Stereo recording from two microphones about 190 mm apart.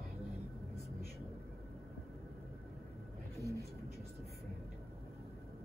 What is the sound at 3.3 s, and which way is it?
Vehicle, 15° left (ahead or behind).